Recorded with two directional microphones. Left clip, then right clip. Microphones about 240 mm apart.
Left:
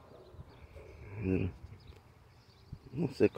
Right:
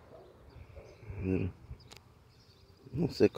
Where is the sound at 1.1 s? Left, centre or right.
Centre.